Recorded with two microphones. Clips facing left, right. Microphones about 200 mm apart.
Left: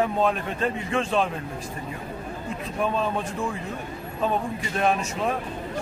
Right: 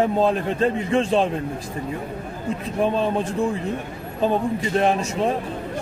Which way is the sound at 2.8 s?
30° right (ahead or behind).